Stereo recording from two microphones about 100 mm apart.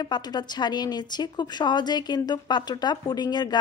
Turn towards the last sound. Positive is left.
turn(degrees=45)  # may be behind; listen again after turning